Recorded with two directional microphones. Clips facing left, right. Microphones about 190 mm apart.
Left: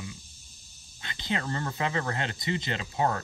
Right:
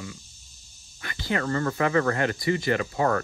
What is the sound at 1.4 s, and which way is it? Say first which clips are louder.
Speech: right 7 dB; 55° right (ahead or behind).